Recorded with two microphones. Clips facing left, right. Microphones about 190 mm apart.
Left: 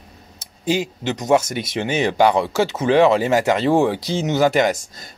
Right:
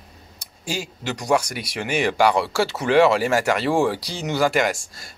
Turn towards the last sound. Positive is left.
turn(degrees=20)  # may be behind; listen again after turning